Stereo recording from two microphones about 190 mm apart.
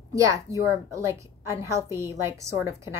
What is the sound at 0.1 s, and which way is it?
A woman's voice, 15° right (ahead or behind).